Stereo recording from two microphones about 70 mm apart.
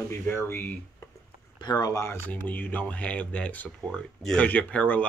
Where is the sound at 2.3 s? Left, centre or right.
Left.